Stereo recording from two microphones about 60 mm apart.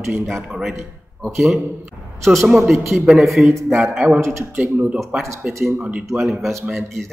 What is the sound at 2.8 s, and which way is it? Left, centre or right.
Speech, centre.